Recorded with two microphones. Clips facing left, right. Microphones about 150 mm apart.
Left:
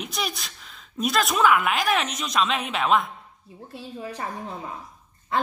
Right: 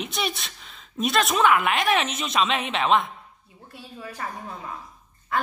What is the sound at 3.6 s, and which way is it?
A woman's voice, 25° left (ahead or behind).